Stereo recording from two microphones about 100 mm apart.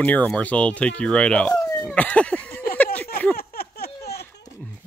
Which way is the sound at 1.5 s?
35° left (ahead or behind).